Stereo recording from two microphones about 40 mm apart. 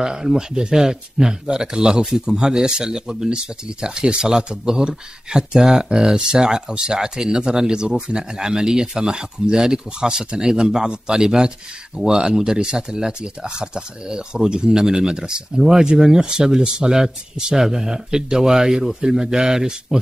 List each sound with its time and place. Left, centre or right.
0.0 s speech: centre